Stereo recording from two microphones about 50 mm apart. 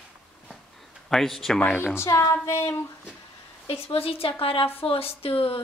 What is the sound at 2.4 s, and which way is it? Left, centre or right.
Speech, left.